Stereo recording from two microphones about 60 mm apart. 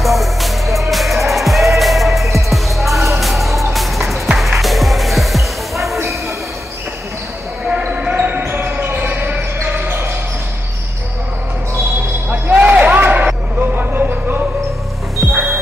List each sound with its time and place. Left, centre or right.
0.0 s music: centre
8.2 s basketball bounce: right
12.3 s basketball bounce: right
13.6 s a sound: right